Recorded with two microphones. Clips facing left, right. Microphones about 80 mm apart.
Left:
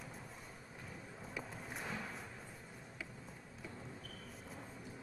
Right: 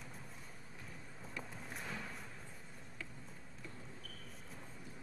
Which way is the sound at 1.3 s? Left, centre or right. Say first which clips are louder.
Left 1 dB; centre.